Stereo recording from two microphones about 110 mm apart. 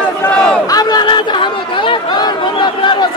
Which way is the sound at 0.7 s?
35° left (ahead or behind).